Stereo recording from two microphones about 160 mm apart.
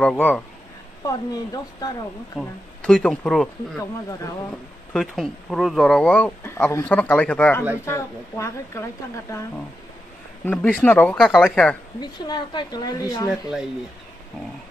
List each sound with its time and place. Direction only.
0.0 s speech: 10° left (ahead or behind)
1.0 s a woman's voice: 25° left (ahead or behind)
2.3 s speech: 5° left (ahead or behind)
4.9 s speech: centre (ahead or behind); by 8.8 s 15° left (ahead or behind)
10.4 s speech: 10° left (ahead or behind)
12.0 s a woman's voice: 25° left (ahead or behind)